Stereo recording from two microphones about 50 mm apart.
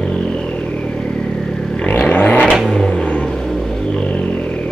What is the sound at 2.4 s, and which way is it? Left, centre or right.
Vehicle, centre.